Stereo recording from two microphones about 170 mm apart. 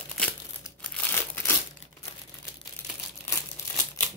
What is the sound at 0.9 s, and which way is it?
Crumpling, 15° left (ahead or behind).